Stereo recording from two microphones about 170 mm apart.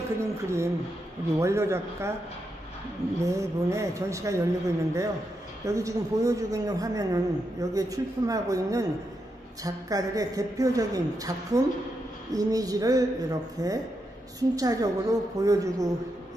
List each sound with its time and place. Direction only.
0.2 s speech: 15° right (ahead or behind)
3.3 s a woman's voice: 20° right (ahead or behind)